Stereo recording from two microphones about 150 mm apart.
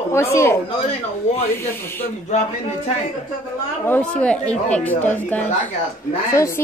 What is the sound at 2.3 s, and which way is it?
Speech, 50° left (ahead or behind).